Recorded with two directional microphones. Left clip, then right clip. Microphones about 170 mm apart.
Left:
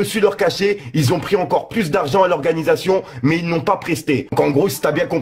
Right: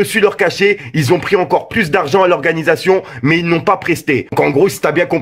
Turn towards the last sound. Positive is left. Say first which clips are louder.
# right 4 dB
turn(degrees=-20)  # may be behind; listen again after turning